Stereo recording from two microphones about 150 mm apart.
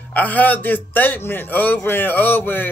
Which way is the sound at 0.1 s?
10° left (ahead or behind).